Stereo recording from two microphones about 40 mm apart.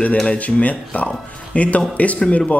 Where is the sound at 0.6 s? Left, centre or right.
Left.